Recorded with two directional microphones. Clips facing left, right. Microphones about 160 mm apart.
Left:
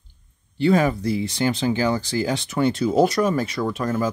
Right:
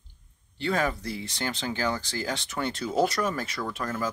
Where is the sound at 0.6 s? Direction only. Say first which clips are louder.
Left 9 dB; 10° left (ahead or behind).